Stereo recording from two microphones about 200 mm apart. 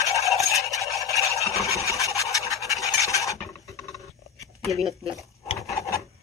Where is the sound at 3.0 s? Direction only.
15° left (ahead or behind).